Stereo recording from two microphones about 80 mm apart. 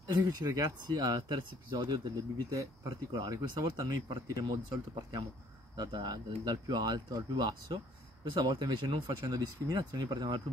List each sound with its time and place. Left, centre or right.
0.1 s speech: right
2.5 s speech: right
2.9 s speech: right
9.2 s speech: right